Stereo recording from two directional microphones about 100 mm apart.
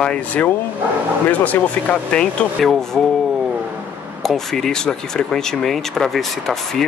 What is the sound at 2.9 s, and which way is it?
Speech, centre (ahead or behind).